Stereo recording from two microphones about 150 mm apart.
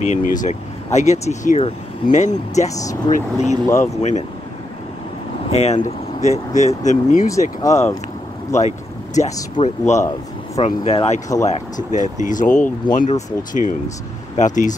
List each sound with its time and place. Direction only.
0.0 s speech: 55° left (ahead or behind)
2.7 s speech: 20° left (ahead or behind)
3.1 s speech: 50° left (ahead or behind)
3.6 s speech: 20° left (ahead or behind)
5.5 s speech: 45° left (ahead or behind)
7.6 s speech: 20° left (ahead or behind)
8.5 s speech: 50° left (ahead or behind)
9.9 s speech: 20° left (ahead or behind)
10.6 s speech: 40° left (ahead or behind); by 14.8 s 55° left (ahead or behind)